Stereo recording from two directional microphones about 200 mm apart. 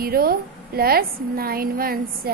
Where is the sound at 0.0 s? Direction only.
50° right (ahead or behind).